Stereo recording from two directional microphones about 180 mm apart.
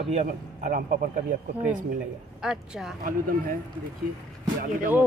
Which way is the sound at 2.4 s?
5° right (ahead or behind).